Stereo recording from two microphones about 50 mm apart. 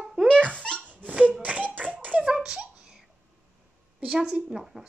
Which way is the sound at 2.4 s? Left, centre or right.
Centre.